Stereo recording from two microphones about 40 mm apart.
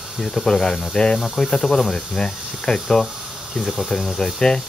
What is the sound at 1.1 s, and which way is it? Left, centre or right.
Cricket, centre.